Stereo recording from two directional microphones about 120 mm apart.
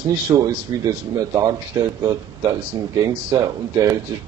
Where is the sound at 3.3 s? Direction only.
30° right (ahead or behind).